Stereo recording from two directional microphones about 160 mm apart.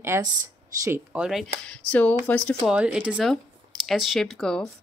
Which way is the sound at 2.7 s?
10° right (ahead or behind).